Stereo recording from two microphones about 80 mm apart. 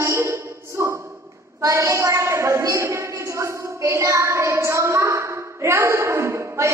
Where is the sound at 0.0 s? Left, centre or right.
Right.